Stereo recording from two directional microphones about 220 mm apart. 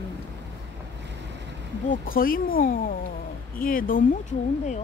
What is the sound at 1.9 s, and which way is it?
Speech, 40° left (ahead or behind).